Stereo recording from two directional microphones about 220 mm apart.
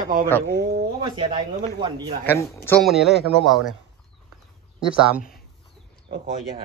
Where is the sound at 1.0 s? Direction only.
20° right (ahead or behind).